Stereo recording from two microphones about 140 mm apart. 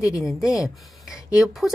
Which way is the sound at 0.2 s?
5° right (ahead or behind).